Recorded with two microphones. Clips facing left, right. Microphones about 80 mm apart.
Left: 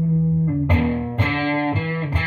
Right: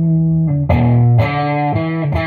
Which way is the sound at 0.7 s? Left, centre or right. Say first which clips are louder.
Right 6 dB; right.